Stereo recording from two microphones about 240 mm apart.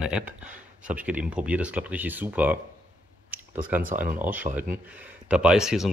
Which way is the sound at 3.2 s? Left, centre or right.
Centre.